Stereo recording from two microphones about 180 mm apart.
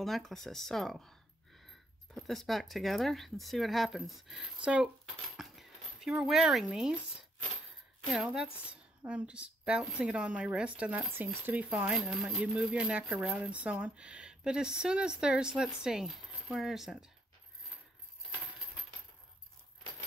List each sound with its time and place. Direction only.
0.0 s speech: centre (ahead or behind)
8.0 s speech: 5° right (ahead or behind)